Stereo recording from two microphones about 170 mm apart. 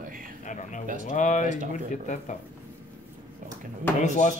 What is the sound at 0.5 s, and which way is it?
Speech, 50° left (ahead or behind).